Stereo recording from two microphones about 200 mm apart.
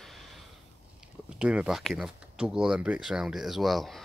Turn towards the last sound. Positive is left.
turn(degrees=0)  # may be behind; listen again after turning